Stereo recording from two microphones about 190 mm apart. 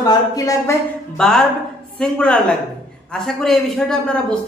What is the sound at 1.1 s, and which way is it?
Speech, 5° left (ahead or behind).